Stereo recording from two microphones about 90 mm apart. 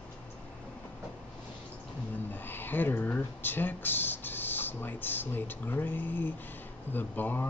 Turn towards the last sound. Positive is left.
turn(degrees=20)  # may be behind; listen again after turning